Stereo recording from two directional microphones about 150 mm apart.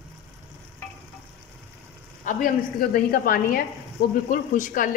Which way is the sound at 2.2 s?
65° left (ahead or behind).